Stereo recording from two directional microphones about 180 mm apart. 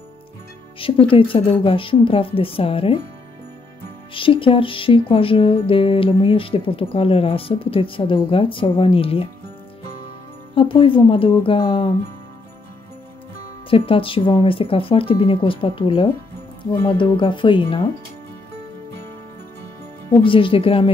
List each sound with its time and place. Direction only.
0.7 s music: 30° left (ahead or behind)
4.1 s music: 30° left (ahead or behind)
10.5 s music: 30° left (ahead or behind)
13.7 s music: 30° left (ahead or behind)
20.1 s music: 30° left (ahead or behind)